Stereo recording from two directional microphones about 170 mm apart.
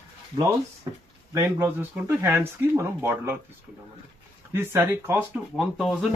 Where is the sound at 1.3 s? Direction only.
15° right (ahead or behind).